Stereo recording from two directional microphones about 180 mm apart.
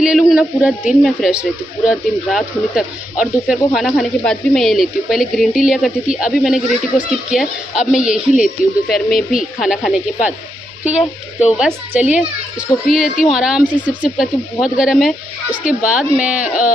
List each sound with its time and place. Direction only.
0.0 s a sound: 5° right (ahead or behind)
1.0 s speech: 5° right (ahead or behind)
9.6 s speech: centre (ahead or behind)
11.0 s speech: 40° left (ahead or behind)
11.6 s speech: 5° right (ahead or behind)